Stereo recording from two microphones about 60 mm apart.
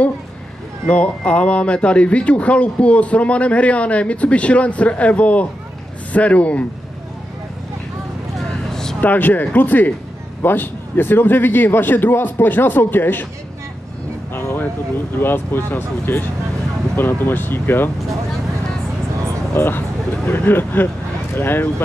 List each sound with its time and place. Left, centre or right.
0.8 s speech: left
9.0 s a man's voice: left
14.3 s a sound: left
15.1 s a man's voice: left
19.5 s a man's voice: left